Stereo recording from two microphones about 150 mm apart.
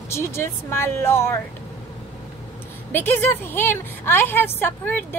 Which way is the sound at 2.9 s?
15° left (ahead or behind).